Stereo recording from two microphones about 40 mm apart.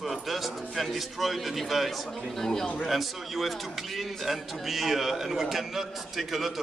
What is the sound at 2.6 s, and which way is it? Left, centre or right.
Speech, left.